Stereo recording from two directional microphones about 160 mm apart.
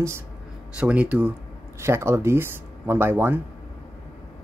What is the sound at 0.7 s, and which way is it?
Speech, 10° right (ahead or behind).